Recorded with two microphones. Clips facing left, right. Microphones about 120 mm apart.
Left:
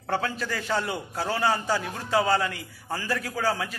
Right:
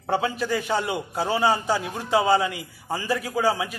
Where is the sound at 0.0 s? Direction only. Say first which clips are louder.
Right 4 dB; 15° right (ahead or behind).